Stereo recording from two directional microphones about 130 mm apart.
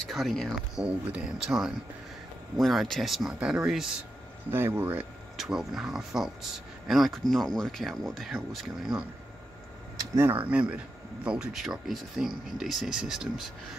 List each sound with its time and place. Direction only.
0.1 s speech: centre (ahead or behind)
4.5 s speech: 20° right (ahead or behind)
5.4 s speech: 5° right (ahead or behind)
9.9 s speech: 20° right (ahead or behind); by 13.5 s 5° right (ahead or behind)